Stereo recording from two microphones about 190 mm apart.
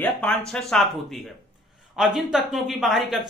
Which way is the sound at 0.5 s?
Centre (ahead or behind).